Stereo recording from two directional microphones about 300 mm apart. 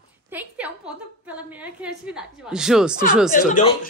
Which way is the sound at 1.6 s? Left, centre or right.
Centre.